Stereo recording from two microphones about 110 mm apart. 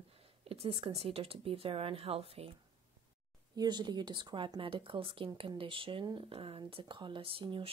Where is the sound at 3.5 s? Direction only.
40° right (ahead or behind).